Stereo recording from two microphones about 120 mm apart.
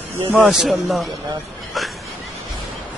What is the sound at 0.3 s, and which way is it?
Speech, centre (ahead or behind).